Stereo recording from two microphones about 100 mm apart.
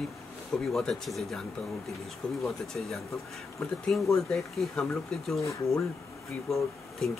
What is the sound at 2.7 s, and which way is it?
Speech, 10° left (ahead or behind).